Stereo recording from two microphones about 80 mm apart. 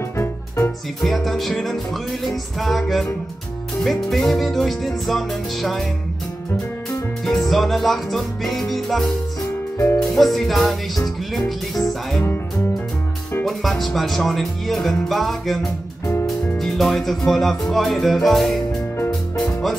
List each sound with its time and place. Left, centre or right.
0.2 s music: left
1.0 s speech: centre
7.2 s speech: centre
12.2 s speech: left
13.5 s speech: centre
16.5 s music: centre